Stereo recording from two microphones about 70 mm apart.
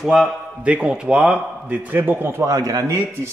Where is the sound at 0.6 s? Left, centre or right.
Centre; by 2.4 s right.